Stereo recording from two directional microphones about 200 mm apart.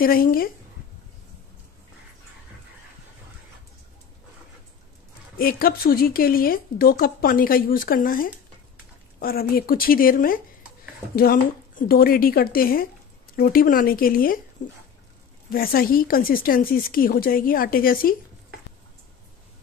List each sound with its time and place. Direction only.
0.0 s speech: 45° left (ahead or behind)
5.4 s speech: 45° left (ahead or behind)
11.9 s speech: 45° left (ahead or behind)
15.5 s speech: 45° left (ahead or behind)